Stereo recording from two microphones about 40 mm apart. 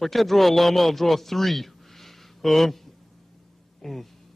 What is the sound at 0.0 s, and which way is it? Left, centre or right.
A man's voice, centre.